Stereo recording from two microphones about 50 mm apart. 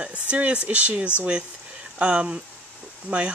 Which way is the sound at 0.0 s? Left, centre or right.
Right.